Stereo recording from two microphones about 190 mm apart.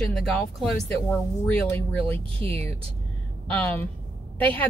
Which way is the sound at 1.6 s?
10° left (ahead or behind).